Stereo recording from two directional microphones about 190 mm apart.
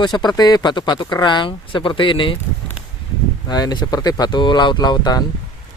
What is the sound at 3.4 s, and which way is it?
Speech, 20° left (ahead or behind).